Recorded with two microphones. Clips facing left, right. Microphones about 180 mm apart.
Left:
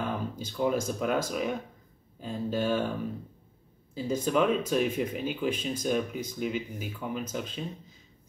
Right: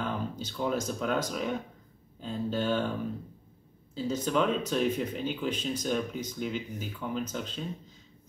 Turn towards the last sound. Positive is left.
turn(degrees=10)  # may be behind; listen again after turning